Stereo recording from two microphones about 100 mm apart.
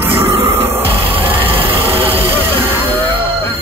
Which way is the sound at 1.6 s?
20° right (ahead or behind).